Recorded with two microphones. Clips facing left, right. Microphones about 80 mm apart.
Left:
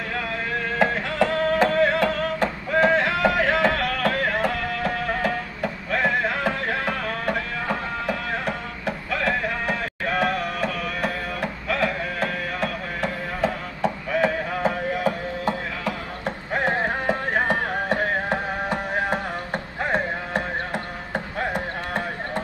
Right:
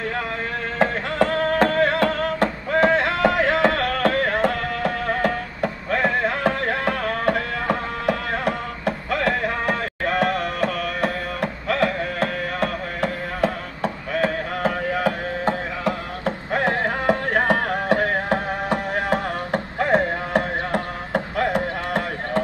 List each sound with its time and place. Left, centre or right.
0.7 s music: right
16.6 s music: right
19.5 s music: right